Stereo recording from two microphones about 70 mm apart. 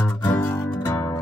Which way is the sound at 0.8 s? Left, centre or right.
Left.